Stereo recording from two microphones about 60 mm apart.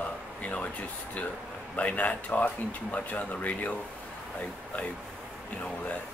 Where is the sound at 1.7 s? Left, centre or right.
Left.